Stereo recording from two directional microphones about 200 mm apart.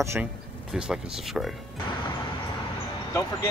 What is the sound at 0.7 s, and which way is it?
Speech, centre (ahead or behind).